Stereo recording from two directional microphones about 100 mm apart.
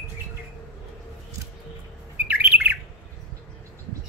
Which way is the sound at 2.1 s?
20° right (ahead or behind).